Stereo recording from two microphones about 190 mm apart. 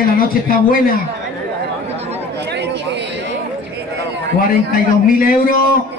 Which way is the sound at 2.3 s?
65° right (ahead or behind).